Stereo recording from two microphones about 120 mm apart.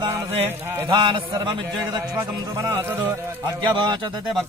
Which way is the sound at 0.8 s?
45° right (ahead or behind).